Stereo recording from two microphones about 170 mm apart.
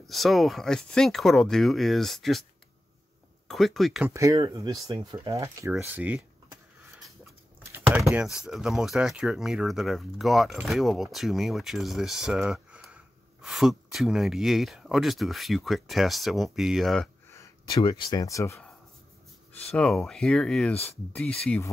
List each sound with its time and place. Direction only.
0.0 s speech: centre (ahead or behind)
3.4 s speech: centre (ahead or behind)
4.1 s speech: 20° right (ahead or behind)
7.7 s speech: 5° right (ahead or behind)
17.3 s speech: 20° left (ahead or behind)
19.7 s speech: 5° left (ahead or behind)
20.7 s speech: 35° left (ahead or behind)
21.1 s speech: 10° left (ahead or behind)